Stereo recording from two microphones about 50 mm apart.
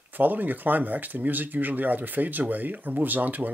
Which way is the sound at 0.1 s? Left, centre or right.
Right.